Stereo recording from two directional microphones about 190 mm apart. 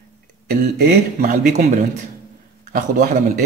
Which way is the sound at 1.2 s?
45° right (ahead or behind).